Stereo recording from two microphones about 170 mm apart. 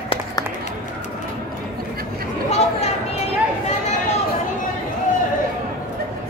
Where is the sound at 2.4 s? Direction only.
40° left (ahead or behind).